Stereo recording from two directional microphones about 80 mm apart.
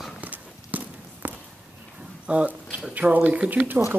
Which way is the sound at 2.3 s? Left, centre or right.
Centre.